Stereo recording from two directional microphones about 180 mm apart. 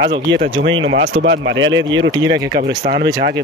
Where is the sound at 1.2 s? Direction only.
80° right.